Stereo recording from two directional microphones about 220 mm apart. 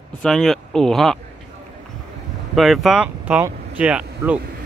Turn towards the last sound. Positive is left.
turn(degrees=-5)  # may be behind; listen again after turning